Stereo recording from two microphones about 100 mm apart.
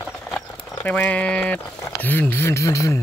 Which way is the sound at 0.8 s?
15° left (ahead or behind).